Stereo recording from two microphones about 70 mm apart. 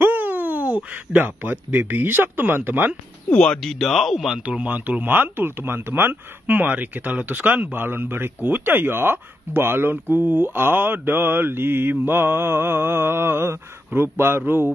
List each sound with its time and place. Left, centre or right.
0.0 s speech: right
3.3 s speech: centre
3.6 s speech: centre
4.5 s speech: right